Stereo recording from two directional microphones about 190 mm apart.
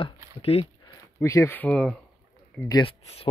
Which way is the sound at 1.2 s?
15° left (ahead or behind).